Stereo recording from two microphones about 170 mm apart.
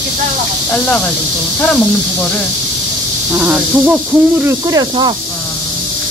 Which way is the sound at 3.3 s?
10° right (ahead or behind).